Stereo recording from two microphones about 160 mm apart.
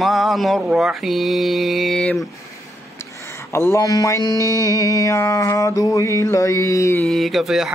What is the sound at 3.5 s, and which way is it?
Mantra, 15° left (ahead or behind).